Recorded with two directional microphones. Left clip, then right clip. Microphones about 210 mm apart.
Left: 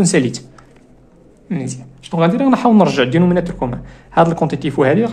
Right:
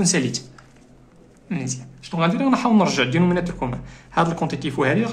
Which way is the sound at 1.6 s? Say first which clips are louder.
Left 3 dB; 25° left (ahead or behind).